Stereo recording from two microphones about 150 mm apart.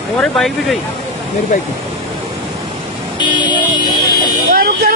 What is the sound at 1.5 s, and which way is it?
Speech, 55° left (ahead or behind).